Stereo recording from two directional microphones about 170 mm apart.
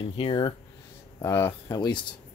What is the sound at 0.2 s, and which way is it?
Speech, 30° left (ahead or behind).